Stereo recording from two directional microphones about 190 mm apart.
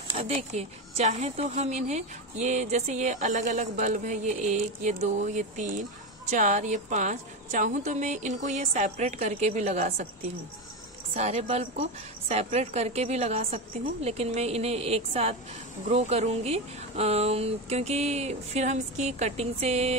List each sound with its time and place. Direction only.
0.1 s a woman's voice: 30° right (ahead or behind)
11.1 s a woman's voice: 35° right (ahead or behind)